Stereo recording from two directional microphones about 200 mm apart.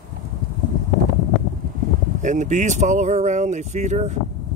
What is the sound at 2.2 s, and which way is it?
Speech, 40° right (ahead or behind).